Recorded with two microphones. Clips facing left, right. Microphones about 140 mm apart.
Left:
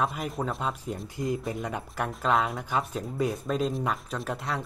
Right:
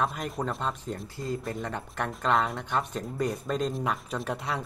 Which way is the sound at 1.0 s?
15° left (ahead or behind).